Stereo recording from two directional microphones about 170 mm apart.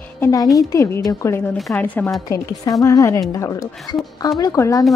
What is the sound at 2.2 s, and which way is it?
A woman's voice, 20° left (ahead or behind).